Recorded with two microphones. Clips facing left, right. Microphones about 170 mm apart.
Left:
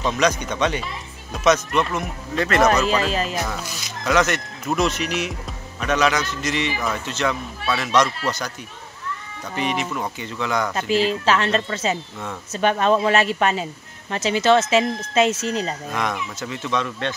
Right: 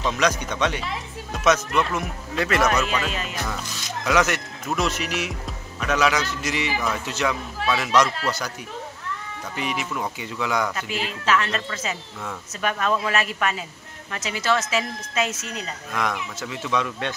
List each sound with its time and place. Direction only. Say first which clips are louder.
0.0 s speech: left 2 dB; centre (ahead or behind)
2.6 s speech: left 4 dB; 35° left (ahead or behind)
4.0 s speech: left 2 dB; 10° right (ahead or behind)
9.6 s speech: left 4 dB; 5° right (ahead or behind)
10.7 s speech: left 9 dB; 30° left (ahead or behind)
15.9 s speech: left 2 dB; centre (ahead or behind)